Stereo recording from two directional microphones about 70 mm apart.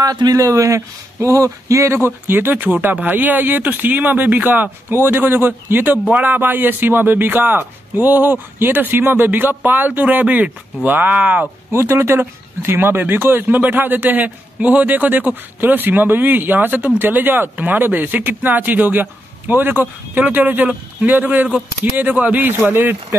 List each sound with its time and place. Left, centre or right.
0.0 s speech: right
0.4 s speech: right
2.0 s speech: right
11.7 s speech: right